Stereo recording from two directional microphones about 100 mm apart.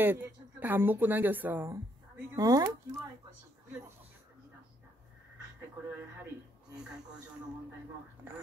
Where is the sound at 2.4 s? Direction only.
35° right (ahead or behind).